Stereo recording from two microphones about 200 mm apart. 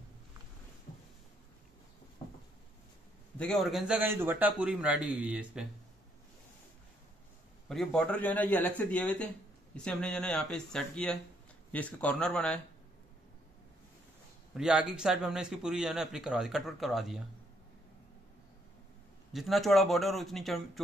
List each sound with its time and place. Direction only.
3.3 s a man's voice: centre (ahead or behind)
7.6 s a man's voice: centre (ahead or behind)
14.5 s a man's voice: 5° right (ahead or behind)
19.3 s a man's voice: centre (ahead or behind)